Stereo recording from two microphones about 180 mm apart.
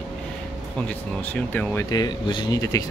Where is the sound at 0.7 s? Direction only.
5° left (ahead or behind).